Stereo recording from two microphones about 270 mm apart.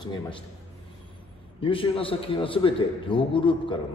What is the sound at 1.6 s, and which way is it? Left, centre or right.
A man's voice, centre.